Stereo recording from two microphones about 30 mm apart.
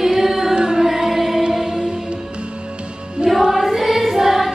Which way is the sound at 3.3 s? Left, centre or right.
Centre.